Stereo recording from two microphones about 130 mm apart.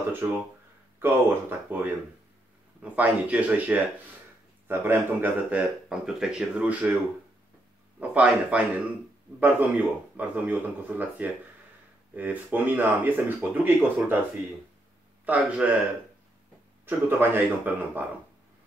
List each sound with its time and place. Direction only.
0.2 s speech: 20° right (ahead or behind)
5.9 s speech: 5° right (ahead or behind)
8.0 s speech: 10° right (ahead or behind)
15.2 s speech: 10° right (ahead or behind)
16.8 s speech: 15° right (ahead or behind)